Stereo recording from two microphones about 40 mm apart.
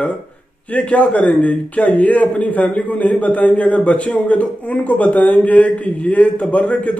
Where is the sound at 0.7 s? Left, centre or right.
Left.